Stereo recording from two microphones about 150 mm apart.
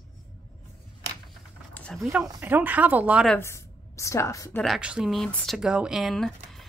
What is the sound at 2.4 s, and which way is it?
Speech, 10° right (ahead or behind).